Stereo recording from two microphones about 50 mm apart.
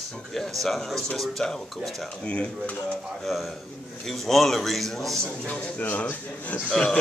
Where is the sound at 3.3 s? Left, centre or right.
Centre.